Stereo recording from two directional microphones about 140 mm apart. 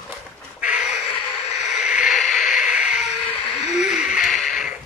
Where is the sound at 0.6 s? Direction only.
5° right (ahead or behind).